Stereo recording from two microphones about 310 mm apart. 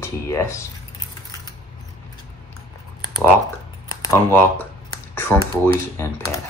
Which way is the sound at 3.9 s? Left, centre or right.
Centre.